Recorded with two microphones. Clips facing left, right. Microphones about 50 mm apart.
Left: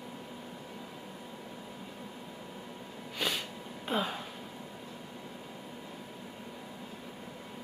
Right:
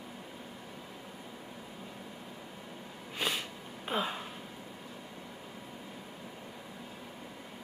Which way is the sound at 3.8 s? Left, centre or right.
Centre.